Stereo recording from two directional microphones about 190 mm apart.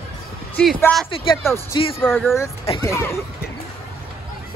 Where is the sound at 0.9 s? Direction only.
10° left (ahead or behind).